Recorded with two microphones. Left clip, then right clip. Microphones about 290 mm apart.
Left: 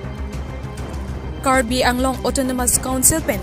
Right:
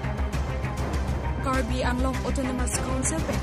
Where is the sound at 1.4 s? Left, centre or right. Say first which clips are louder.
Left 12 dB; centre.